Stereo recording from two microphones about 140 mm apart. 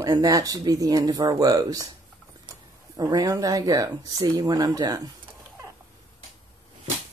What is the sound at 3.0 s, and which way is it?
Speech, 25° right (ahead or behind).